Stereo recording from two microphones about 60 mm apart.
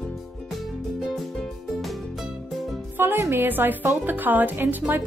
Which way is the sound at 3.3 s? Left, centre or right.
Right.